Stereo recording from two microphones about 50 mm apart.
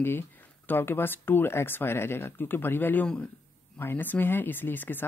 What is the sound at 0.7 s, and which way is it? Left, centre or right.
Speech, left.